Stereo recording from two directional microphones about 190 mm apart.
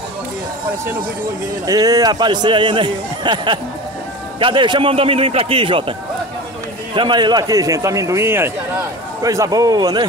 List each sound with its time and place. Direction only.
1.7 s a man's voice: 20° right (ahead or behind)